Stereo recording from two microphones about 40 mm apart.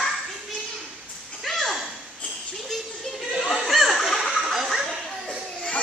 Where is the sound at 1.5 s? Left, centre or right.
Centre.